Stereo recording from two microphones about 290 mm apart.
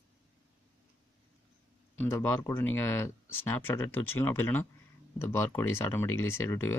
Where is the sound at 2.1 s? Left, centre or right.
Centre.